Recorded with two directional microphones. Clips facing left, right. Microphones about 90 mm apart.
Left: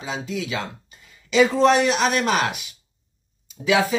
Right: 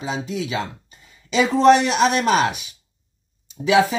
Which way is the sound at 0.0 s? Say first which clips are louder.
Right 2 dB; 30° right (ahead or behind).